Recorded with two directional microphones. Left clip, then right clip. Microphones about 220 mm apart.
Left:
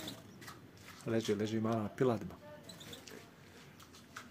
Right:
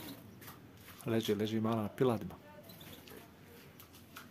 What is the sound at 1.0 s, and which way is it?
Speech, 5° right (ahead or behind).